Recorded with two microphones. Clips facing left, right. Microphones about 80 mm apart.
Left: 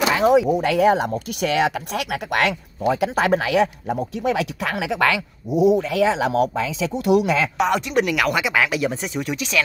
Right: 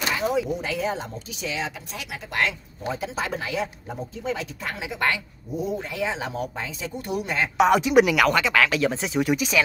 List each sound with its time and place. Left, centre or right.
0.1 s speech: left
7.5 s speech: centre
8.4 s speech: centre